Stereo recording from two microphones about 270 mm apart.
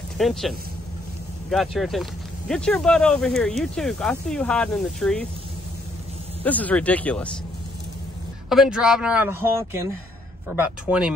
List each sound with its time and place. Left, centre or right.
0.2 s speech: centre
6.4 s speech: centre
8.5 s speech: centre